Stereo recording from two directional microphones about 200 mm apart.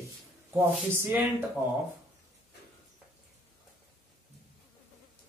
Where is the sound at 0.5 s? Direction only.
10° right (ahead or behind).